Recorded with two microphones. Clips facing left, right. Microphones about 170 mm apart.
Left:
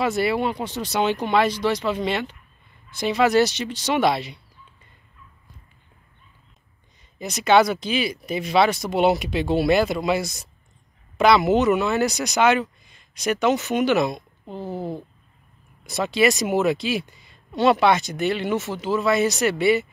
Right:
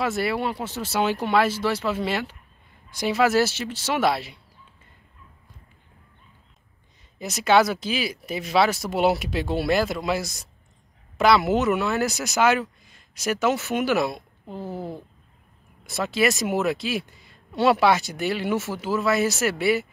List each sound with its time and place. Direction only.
0.0 s speech: centre (ahead or behind)
7.2 s speech: centre (ahead or behind)